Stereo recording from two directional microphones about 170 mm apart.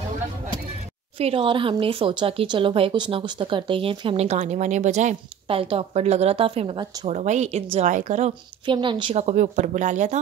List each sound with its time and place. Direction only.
1.1 s speech: 35° right (ahead or behind)
8.6 s a woman's voice: 30° right (ahead or behind); by 10.2 s 45° right (ahead or behind)